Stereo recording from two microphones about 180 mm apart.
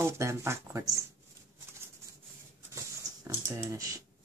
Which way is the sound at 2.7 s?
15° right (ahead or behind).